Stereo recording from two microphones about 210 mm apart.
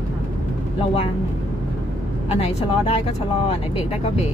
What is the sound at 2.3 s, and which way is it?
Speech, 30° left (ahead or behind).